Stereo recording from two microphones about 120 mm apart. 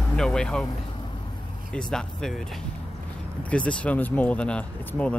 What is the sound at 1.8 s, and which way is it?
Speech, 5° left (ahead or behind).